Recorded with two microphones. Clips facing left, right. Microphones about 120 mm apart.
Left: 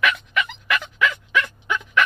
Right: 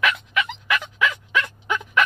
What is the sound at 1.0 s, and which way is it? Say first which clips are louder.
Fowl: left 3 dB; 20° right (ahead or behind).